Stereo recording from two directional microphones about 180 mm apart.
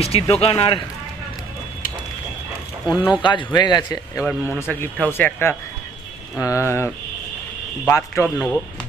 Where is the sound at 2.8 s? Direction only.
5° right (ahead or behind).